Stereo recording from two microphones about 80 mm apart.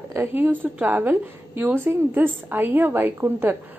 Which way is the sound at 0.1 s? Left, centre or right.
Right.